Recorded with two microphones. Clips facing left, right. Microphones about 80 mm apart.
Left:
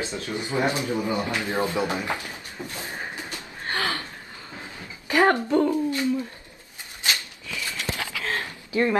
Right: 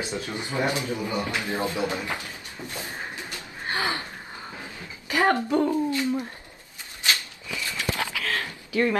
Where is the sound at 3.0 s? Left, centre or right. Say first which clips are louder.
Left 1 dB; left.